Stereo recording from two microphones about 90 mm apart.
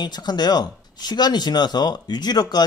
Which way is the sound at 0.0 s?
50° left (ahead or behind).